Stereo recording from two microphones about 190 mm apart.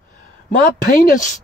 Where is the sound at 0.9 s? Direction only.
50° left (ahead or behind).